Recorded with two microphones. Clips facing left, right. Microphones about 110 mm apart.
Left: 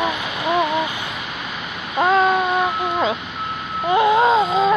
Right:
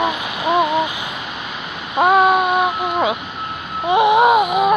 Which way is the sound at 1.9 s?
15° right (ahead or behind).